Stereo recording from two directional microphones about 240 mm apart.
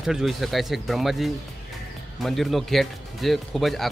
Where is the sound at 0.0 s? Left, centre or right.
Centre.